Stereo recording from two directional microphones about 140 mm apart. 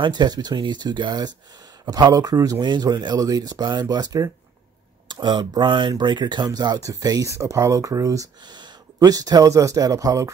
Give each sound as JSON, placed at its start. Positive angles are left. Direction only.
{"t": 0.0, "sound": "speech", "side_deg": -30}